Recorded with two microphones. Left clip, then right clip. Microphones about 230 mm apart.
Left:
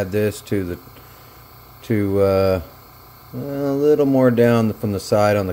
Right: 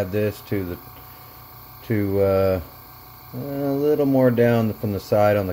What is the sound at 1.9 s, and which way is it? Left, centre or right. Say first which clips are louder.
Speech: left 3 dB; centre.